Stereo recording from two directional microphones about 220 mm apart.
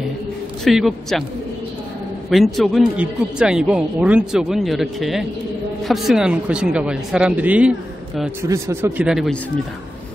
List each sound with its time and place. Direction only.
0.7 s a man's voice: centre (ahead or behind)
2.2 s a man's voice: centre (ahead or behind)